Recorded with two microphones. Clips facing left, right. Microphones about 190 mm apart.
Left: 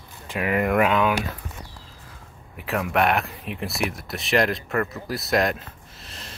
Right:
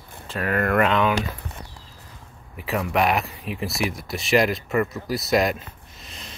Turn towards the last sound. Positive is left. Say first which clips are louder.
# even
turn(degrees=0)  # may be behind; listen again after turning